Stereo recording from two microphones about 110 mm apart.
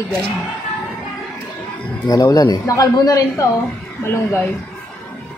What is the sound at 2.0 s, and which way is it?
A man's voice, 35° left (ahead or behind).